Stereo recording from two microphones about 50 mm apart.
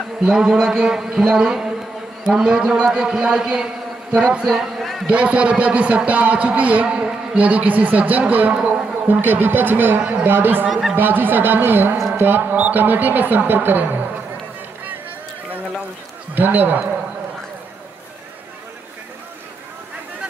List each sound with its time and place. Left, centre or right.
0.2 s a man's voice: centre
4.7 s a sound: centre
5.0 s a man's voice: right
10.7 s speech: centre
11.0 s a man's voice: right
16.3 s speech: right